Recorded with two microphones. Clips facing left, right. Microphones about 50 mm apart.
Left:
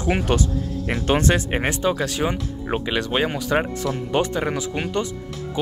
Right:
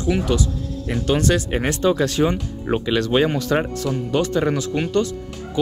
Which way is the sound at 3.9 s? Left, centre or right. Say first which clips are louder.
Right 1 dB; left.